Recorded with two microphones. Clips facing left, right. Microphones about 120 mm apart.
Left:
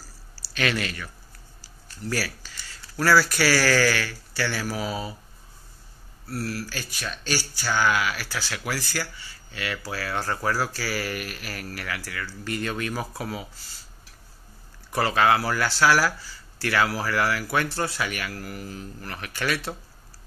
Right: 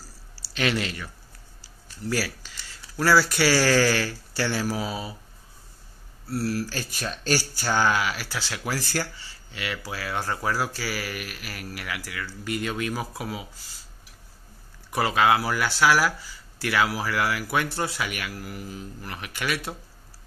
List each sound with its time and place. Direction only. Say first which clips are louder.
0.4 s speech: right 1 dB; 20° right (ahead or behind)
6.7 s speech: right 2 dB; 35° right (ahead or behind); by 11.0 s 20° right (ahead or behind)
11.0 s speech: left 3 dB; 5° right (ahead or behind)
14.9 s speech: even; 15° right (ahead or behind)